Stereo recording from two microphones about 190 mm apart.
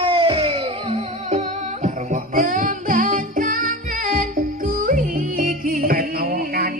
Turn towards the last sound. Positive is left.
turn(degrees=-50)  # may be behind; listen again after turning